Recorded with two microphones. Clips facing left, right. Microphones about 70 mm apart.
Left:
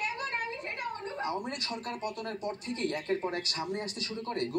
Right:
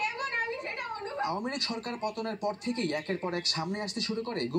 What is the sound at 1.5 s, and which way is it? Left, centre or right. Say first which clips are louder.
Speech: right 2 dB; right.